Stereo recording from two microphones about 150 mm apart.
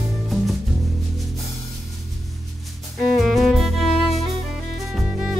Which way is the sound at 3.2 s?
Centre (ahead or behind).